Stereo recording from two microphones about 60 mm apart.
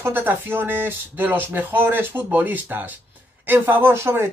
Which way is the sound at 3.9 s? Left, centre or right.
Right.